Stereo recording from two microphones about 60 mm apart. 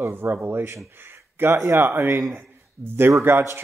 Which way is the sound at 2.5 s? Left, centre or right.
Right.